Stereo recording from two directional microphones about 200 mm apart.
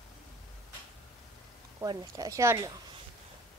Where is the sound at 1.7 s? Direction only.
20° right (ahead or behind).